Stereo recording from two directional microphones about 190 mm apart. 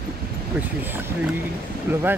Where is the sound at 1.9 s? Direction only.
10° right (ahead or behind).